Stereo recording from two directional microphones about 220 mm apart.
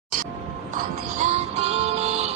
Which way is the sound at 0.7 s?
30° right (ahead or behind).